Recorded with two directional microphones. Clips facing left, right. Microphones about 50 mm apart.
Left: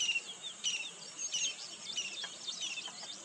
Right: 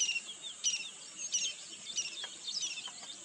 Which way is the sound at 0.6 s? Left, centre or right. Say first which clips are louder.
Left 1 dB; centre.